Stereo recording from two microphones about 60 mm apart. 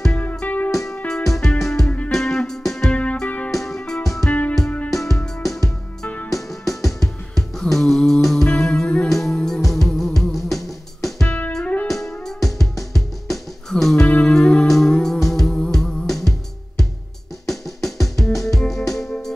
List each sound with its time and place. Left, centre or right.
0.4 s music: left
1.0 s music: centre
2.9 s music: centre
3.5 s music: centre
4.3 s music: left
4.9 s music: centre
6.7 s music: centre
11.2 s music: left
12.3 s music: centre
14.0 s music: centre